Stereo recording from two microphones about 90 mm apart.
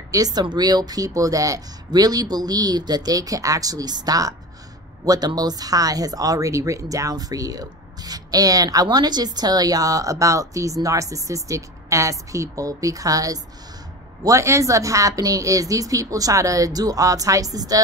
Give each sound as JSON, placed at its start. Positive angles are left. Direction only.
{"t": 0.1, "sound": "a woman's voice", "side_deg": -45}